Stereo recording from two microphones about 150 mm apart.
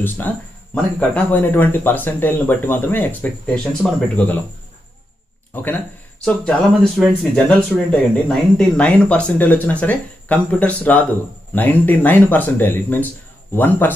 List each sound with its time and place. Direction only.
0.9 s speech: 10° left (ahead or behind)
5.5 s speech: 15° left (ahead or behind)